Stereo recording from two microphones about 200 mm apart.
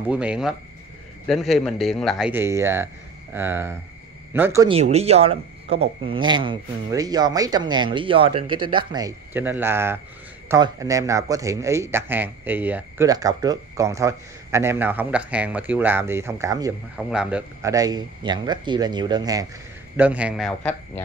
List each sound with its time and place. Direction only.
0.1 s speech: 5° right (ahead or behind)
4.6 s speech: 30° right (ahead or behind); by 16.7 s 15° right (ahead or behind)
16.9 s speech: 5° right (ahead or behind)
20.0 s speech: 5° right (ahead or behind)